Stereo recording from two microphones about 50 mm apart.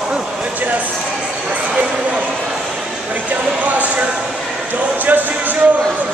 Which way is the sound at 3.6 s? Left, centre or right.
Right.